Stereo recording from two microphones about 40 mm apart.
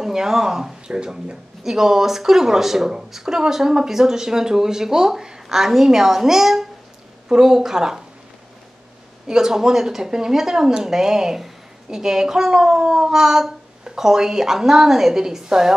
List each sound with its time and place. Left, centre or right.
0.0 s speech: centre
9.3 s speech: centre